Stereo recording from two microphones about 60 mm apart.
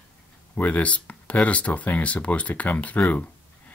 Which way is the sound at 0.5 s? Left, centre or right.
Left.